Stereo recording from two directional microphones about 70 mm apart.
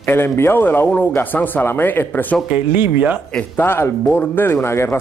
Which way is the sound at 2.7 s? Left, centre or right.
Right.